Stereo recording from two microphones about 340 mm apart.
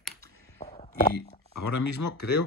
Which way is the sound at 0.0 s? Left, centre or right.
Centre.